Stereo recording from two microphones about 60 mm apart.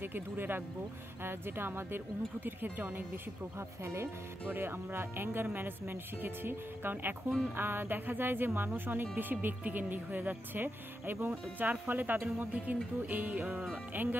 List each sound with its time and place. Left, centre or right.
0.0 s speech: right
3.5 s speech: right
11.2 s speech: right
13.9 s speech: right